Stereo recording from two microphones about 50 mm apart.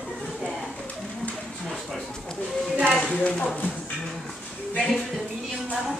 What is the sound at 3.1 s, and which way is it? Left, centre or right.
Clip-clop, left.